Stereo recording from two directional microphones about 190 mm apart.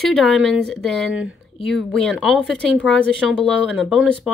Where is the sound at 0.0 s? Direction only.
Centre (ahead or behind).